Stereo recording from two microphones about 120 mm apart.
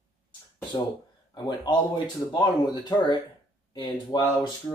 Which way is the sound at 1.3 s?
35° left (ahead or behind).